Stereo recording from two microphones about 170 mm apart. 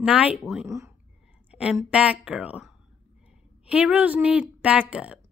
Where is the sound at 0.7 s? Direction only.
15° right (ahead or behind).